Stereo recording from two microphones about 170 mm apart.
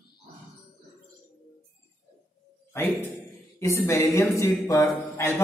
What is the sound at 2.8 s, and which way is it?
A man's voice, 15° left (ahead or behind).